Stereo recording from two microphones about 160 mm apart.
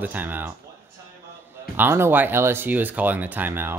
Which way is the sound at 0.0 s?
10° right (ahead or behind).